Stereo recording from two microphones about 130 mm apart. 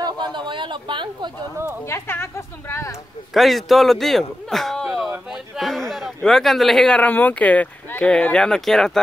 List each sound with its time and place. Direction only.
0.0 s a sound: 35° right (ahead or behind)
1.9 s speech: 20° left (ahead or behind)
3.3 s a man's voice: centre (ahead or behind)